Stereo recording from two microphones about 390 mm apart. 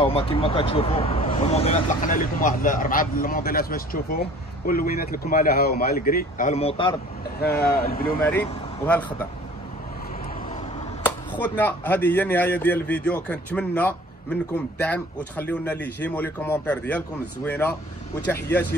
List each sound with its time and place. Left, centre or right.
0.0 s speech: centre
8.3 s speech: centre
11.1 s speech: centre